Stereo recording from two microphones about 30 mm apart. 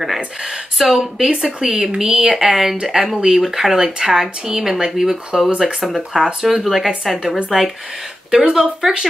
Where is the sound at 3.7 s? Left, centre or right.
Centre.